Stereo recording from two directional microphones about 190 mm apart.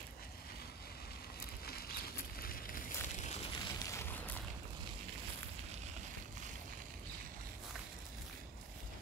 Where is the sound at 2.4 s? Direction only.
50° left (ahead or behind); by 3.7 s 30° left (ahead or behind).